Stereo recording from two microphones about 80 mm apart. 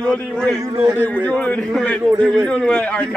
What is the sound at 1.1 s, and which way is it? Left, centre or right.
A man's voice, centre.